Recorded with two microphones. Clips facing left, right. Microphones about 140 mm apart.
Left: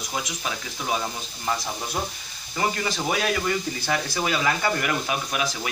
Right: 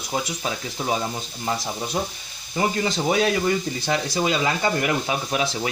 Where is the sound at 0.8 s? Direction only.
35° right (ahead or behind).